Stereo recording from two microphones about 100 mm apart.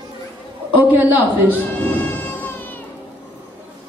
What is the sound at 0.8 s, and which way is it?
Speech, 20° right (ahead or behind).